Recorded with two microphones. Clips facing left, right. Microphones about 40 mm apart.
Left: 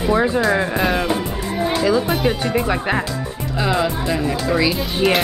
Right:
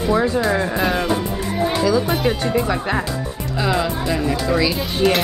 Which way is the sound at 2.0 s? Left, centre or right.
Centre.